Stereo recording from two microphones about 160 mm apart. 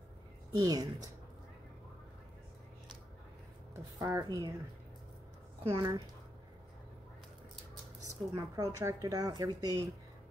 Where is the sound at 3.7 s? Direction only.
20° right (ahead or behind).